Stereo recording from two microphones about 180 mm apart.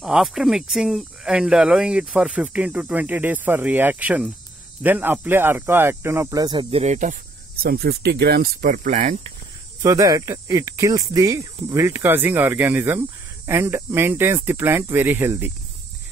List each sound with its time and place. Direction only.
0.0 s speech: centre (ahead or behind); by 6.8 s 25° right (ahead or behind)
6.8 s speech: 40° right (ahead or behind)
7.6 s speech: 60° right (ahead or behind)
9.8 s speech: 20° right (ahead or behind)